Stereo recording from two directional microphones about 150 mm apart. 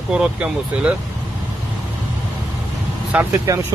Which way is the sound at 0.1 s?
5° right (ahead or behind).